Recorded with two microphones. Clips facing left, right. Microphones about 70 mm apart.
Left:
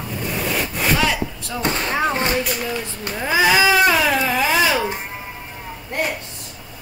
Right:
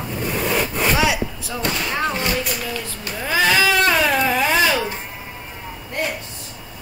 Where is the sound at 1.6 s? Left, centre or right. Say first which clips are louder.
Left 2 dB; left; by 4.8 s centre.